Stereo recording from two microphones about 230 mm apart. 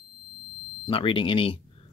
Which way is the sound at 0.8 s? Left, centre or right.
Left.